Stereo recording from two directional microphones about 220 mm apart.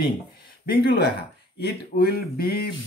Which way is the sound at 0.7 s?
45° left (ahead or behind).